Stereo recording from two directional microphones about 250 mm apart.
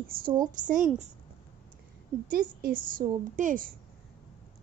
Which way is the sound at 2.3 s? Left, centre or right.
Right.